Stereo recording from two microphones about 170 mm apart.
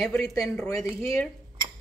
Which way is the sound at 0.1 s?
5° left (ahead or behind).